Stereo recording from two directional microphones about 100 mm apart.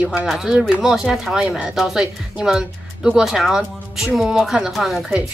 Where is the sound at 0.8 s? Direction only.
5° right (ahead or behind).